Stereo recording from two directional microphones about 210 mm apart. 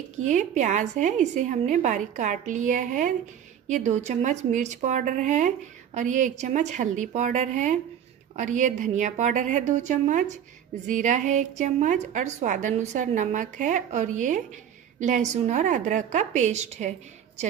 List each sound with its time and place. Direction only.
0.2 s a woman's voice: 35° right (ahead or behind)